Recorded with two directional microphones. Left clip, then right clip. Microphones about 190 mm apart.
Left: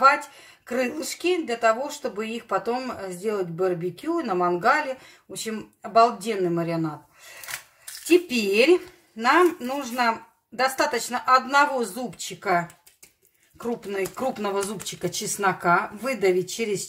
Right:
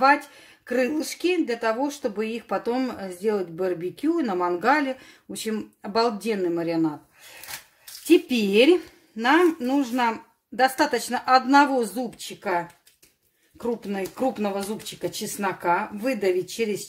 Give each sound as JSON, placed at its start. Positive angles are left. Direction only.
{"t": 0.7, "sound": "speech", "side_deg": -50}
{"t": 8.1, "sound": "speech", "side_deg": -45}
{"t": 13.9, "sound": "speech", "side_deg": -40}